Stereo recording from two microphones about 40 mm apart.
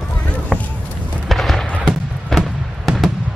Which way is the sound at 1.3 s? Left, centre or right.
Centre.